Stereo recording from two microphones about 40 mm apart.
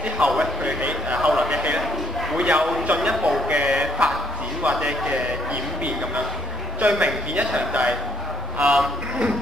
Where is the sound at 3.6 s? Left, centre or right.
Centre.